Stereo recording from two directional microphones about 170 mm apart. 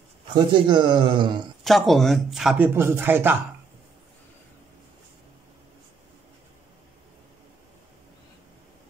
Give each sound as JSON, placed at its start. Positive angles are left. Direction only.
{"t": 0.3, "sound": "speech", "side_deg": -25}
{"t": 1.6, "sound": "speech", "side_deg": 0}
{"t": 2.7, "sound": "a man's voice", "side_deg": -15}